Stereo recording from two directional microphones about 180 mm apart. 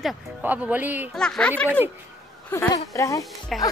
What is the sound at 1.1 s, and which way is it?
Speech, 5° left (ahead or behind).